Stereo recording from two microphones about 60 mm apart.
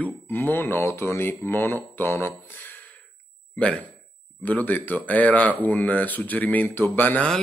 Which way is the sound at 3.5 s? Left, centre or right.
Centre.